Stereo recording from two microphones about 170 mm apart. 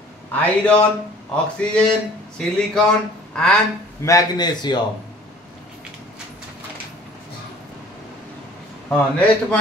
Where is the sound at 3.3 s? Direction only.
5° left (ahead or behind).